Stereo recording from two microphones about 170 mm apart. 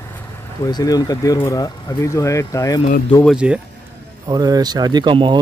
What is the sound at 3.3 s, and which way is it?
Speech, 5° right (ahead or behind).